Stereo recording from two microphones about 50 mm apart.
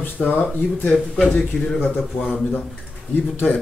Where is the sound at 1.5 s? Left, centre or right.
Centre.